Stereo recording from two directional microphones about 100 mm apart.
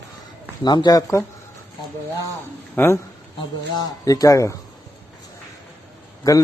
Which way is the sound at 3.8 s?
40° left (ahead or behind).